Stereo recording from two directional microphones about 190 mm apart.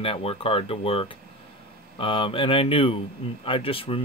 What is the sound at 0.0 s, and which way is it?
Speech, 30° left (ahead or behind).